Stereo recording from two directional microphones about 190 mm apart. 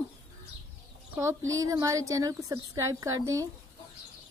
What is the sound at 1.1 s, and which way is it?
A woman's voice, 15° right (ahead or behind).